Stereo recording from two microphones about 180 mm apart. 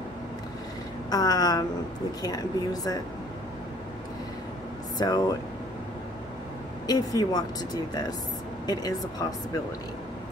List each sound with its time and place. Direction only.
1.1 s speech: 20° left (ahead or behind)
4.9 s speech: 20° left (ahead or behind)
6.9 s speech: 20° left (ahead or behind)